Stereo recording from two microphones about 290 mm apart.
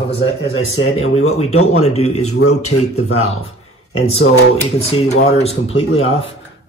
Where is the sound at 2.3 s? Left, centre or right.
Left.